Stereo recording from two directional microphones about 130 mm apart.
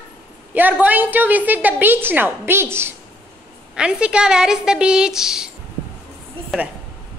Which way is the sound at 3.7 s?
5° right (ahead or behind).